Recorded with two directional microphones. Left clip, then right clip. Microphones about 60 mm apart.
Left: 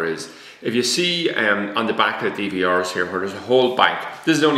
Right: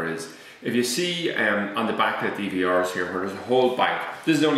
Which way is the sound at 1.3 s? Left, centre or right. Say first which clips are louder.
Left 4 dB; centre.